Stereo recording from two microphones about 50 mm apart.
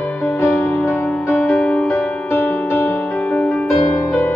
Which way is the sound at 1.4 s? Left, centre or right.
Left.